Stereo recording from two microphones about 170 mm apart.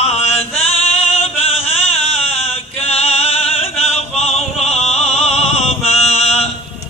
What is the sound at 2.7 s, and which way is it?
Music, 35° left (ahead or behind).